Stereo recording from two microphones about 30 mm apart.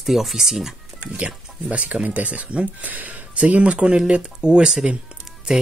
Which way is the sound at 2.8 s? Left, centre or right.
Right.